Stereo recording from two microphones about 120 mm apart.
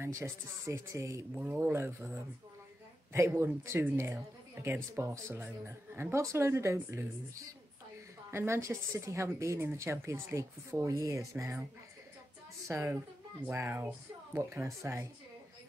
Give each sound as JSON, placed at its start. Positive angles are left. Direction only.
{"t": 0.0, "sound": "speech", "side_deg": -25}
{"t": 1.3, "sound": "speech", "side_deg": -15}
{"t": 3.1, "sound": "a woman's voice", "side_deg": -25}
{"t": 8.3, "sound": "speech", "side_deg": -20}
{"t": 12.6, "sound": "speech", "side_deg": -25}